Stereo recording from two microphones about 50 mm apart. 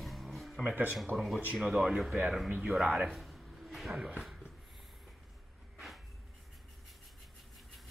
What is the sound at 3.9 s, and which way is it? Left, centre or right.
Speech, centre.